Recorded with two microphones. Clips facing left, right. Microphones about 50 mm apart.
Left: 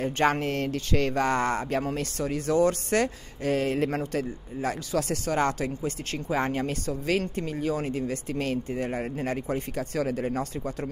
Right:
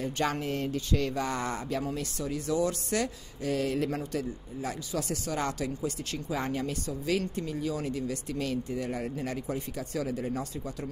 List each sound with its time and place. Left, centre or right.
0.0 s speech: left
0.5 s speech: left